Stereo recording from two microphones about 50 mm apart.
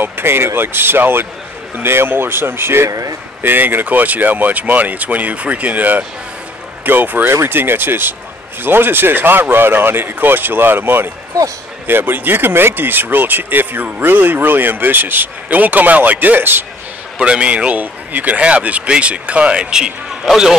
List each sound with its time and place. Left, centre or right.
0.0 s speech: right
3.4 s speech: right
17.2 s speech: right
17.7 s speech: right; by 19.9 s centre